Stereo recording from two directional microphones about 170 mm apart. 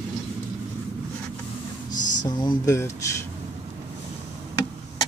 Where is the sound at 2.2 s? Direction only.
25° left (ahead or behind).